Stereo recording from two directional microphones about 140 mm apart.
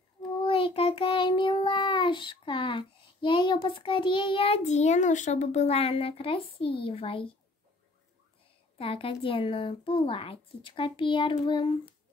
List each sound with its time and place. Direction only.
0.4 s child singing: 40° left (ahead or behind)
4.6 s a child's voice: 55° left (ahead or behind); by 7.2 s 40° left (ahead or behind)
8.7 s speech: 40° left (ahead or behind)